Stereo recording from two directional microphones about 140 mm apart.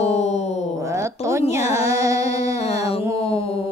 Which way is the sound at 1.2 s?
20° right (ahead or behind).